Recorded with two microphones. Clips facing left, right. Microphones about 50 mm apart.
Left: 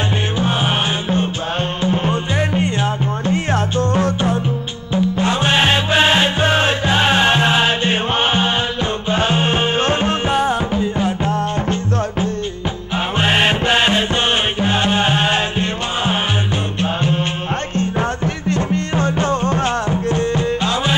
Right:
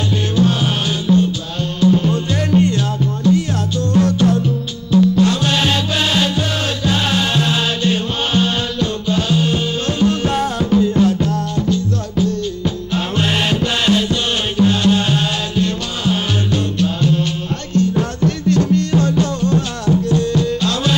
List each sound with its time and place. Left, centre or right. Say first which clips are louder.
1.8 s music: right 7 dB; left
13.2 s music: left 3 dB; left
17.7 s music: right 5 dB; left